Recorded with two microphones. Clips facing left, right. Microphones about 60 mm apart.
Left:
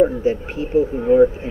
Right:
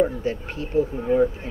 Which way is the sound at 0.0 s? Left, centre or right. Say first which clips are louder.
Left 6 dB; centre.